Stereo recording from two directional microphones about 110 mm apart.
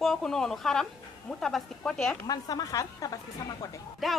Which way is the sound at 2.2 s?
35° left (ahead or behind).